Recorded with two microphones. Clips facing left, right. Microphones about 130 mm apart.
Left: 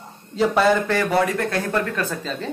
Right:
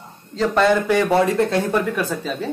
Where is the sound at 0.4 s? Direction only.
5° left (ahead or behind).